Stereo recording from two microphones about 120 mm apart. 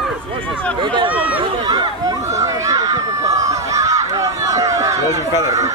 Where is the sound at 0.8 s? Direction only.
40° right (ahead or behind).